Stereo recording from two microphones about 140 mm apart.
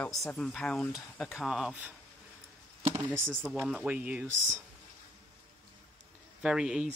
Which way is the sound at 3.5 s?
5° right (ahead or behind).